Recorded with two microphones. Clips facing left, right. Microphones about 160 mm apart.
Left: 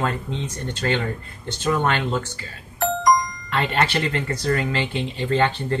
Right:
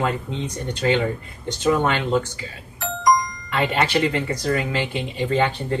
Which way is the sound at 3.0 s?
Centre (ahead or behind).